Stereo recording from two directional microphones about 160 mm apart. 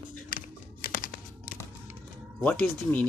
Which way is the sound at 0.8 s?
60° left (ahead or behind).